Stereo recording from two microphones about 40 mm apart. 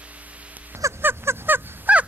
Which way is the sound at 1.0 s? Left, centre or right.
Right.